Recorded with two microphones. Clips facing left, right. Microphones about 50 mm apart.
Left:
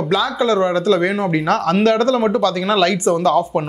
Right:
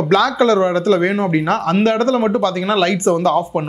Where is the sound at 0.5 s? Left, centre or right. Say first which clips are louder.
Right 1 dB; right.